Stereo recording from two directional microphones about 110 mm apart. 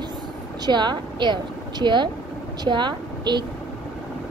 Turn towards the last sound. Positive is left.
turn(degrees=-45)  # may be behind; listen again after turning